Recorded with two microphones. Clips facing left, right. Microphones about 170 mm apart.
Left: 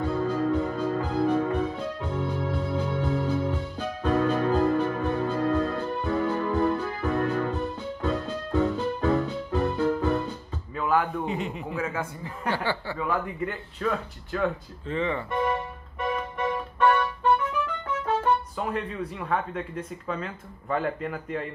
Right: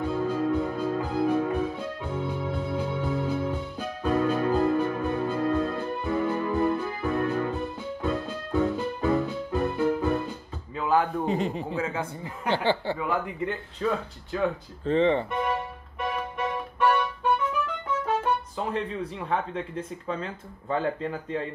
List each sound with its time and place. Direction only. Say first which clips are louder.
0.0 s music: left 1 dB; 10° right (ahead or behind)
10.7 s a man's voice: right 1 dB; 25° right (ahead or behind)
14.9 s speech: right 6 dB; 30° right (ahead or behind)
16.2 s music: left 1 dB; 10° right (ahead or behind)
18.6 s speech: even; 30° right (ahead or behind)